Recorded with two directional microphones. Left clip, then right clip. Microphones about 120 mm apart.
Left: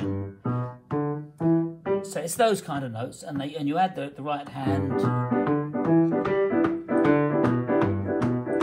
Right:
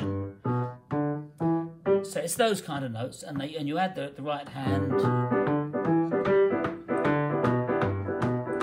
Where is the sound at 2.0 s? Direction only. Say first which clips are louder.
Left 2 dB; 15° left (ahead or behind).